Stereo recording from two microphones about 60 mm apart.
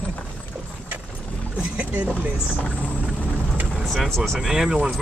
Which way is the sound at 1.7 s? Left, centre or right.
Centre.